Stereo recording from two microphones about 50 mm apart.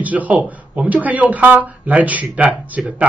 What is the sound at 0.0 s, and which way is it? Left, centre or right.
A man's voice, right.